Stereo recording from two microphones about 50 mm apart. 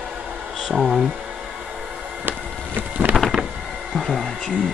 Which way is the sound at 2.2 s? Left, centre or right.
Right.